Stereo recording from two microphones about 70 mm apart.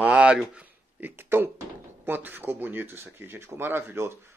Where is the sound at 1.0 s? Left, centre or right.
Right.